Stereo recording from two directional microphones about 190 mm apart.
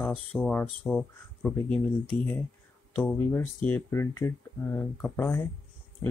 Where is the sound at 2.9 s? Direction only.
10° left (ahead or behind).